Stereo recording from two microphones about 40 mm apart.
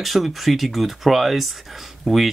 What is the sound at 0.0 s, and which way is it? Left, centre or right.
Speech, centre.